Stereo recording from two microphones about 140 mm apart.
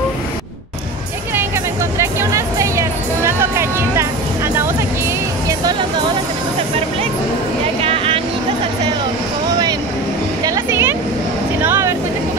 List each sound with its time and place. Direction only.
2.0 s music: 20° right (ahead or behind)
7.8 s vehicle: 40° right (ahead or behind)
10.4 s music: 20° right (ahead or behind)